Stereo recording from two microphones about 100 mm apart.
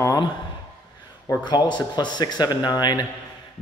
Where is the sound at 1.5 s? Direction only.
45° left (ahead or behind).